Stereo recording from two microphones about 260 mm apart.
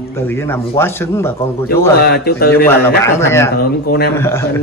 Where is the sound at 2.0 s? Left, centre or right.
Left.